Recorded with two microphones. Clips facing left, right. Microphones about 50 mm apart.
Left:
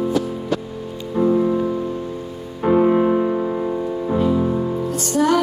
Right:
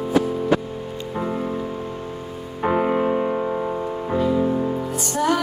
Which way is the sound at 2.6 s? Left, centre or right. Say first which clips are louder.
Left 5 dB; right.